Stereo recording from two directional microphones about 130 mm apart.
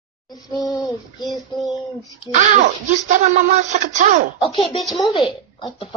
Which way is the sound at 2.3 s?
70° right (ahead or behind).